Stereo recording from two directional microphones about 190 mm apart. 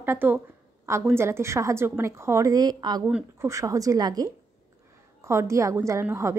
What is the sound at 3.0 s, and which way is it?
A woman's voice, 10° right (ahead or behind).